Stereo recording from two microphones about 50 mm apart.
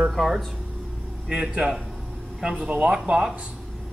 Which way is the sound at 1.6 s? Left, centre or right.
Centre.